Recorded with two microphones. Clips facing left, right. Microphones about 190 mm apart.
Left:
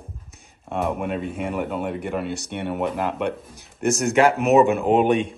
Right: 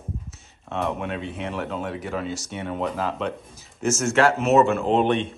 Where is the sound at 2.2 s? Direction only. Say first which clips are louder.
Left 2 dB; 60° left (ahead or behind).